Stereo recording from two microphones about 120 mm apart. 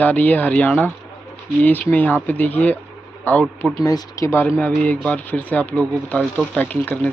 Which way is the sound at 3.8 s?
30° left (ahead or behind).